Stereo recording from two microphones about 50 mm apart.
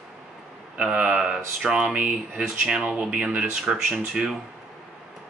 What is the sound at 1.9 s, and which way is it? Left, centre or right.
Speech, right.